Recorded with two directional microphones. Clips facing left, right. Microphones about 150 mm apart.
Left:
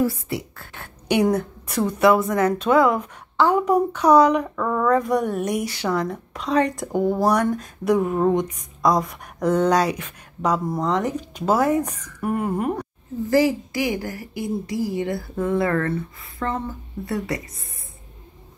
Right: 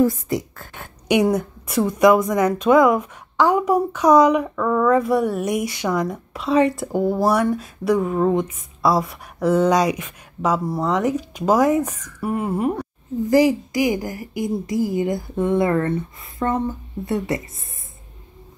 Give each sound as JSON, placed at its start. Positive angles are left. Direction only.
{"t": 1.0, "sound": "a woman's voice", "side_deg": -10}
{"t": 13.3, "sound": "a woman's voice", "side_deg": -20}